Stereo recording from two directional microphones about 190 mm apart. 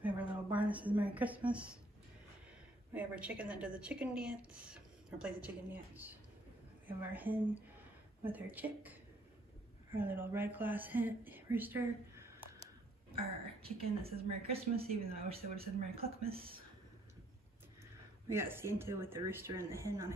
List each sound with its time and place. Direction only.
0.0 s a sound: 10° right (ahead or behind)
2.9 s speech: 10° right (ahead or behind)
9.9 s speech: 10° right (ahead or behind)
13.6 s speech: 30° right (ahead or behind)
18.3 s speech: 15° right (ahead or behind)